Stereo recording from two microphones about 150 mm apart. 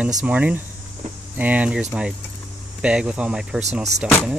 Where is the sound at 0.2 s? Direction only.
10° right (ahead or behind).